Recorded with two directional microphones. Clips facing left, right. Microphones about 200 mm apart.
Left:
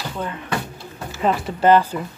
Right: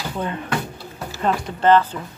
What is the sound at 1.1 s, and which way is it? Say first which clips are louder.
Speech: left 2 dB; 5° left (ahead or behind).